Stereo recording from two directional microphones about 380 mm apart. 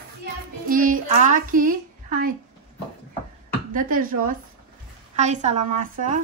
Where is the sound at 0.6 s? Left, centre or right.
Right.